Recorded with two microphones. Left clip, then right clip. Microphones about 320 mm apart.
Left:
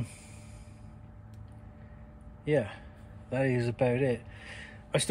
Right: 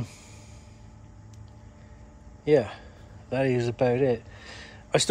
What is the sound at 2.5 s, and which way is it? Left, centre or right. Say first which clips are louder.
Speech: right 7 dB; centre.